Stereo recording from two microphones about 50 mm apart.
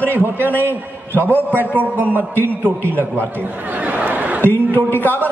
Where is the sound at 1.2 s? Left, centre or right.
Right.